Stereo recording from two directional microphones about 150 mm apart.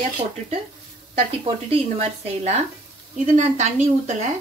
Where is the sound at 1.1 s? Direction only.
40° right (ahead or behind).